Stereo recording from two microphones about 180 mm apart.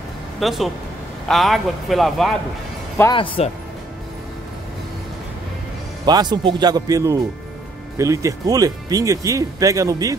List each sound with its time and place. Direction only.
0.4 s a man's voice: centre (ahead or behind)
3.4 s speech: 35° left (ahead or behind)
6.0 s speech: 25° right (ahead or behind)